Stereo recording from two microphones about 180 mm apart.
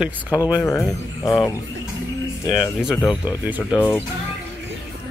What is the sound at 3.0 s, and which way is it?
Speech, 20° left (ahead or behind).